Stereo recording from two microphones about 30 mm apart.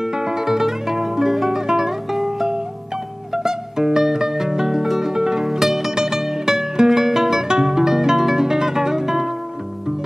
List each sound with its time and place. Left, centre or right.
0.0 s music: right
0.4 s music: centre
5.1 s music: right
5.4 s music: centre